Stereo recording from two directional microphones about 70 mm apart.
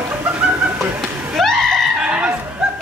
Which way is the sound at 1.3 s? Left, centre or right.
Centre.